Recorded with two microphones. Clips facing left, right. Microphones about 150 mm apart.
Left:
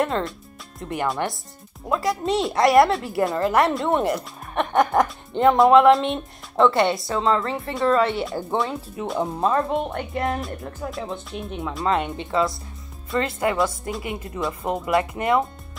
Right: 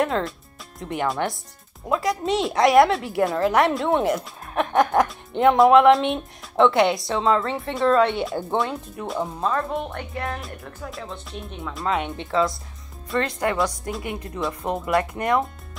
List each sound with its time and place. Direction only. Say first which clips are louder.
0.0 s a woman's voice: even; centre (ahead or behind)
9.4 s speech: left 4 dB; 20° left (ahead or behind)
11.7 s a woman's voice: left 2 dB; centre (ahead or behind)